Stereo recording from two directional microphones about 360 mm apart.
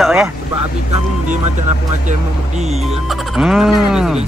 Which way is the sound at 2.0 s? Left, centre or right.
Centre.